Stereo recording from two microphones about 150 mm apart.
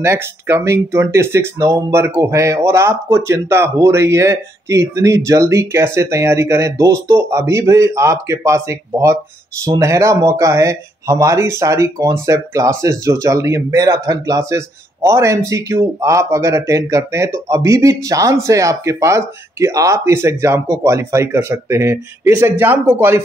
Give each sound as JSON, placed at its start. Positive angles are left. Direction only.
{"t": 0.0, "sound": "speech", "side_deg": -15}